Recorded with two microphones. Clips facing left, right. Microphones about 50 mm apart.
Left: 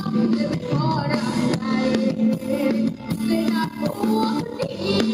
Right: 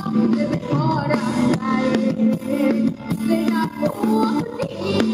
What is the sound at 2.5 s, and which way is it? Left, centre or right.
Music, centre.